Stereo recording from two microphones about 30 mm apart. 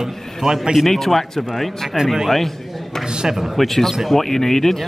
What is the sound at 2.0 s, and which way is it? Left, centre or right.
Speech, centre.